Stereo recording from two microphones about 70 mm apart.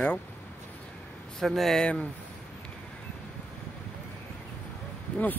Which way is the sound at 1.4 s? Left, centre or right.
Centre.